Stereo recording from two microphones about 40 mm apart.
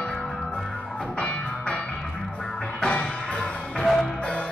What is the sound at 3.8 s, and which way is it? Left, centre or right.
Music, centre.